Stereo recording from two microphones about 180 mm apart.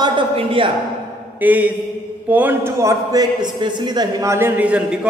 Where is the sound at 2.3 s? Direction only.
10° right (ahead or behind).